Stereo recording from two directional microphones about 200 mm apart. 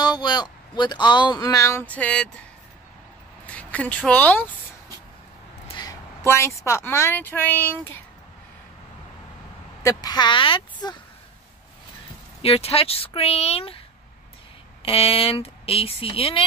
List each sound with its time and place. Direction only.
0.0 s speech: 20° left (ahead or behind)
3.4 s speech: 5° left (ahead or behind)
5.8 s a woman's voice: 15° left (ahead or behind)
9.8 s speech: 20° left (ahead or behind)
12.4 s speech: 30° left (ahead or behind)